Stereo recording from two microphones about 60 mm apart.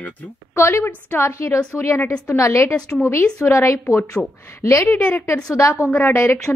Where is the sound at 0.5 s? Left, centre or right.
Left.